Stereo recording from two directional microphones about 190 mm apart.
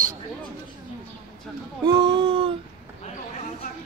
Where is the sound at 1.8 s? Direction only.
20° right (ahead or behind).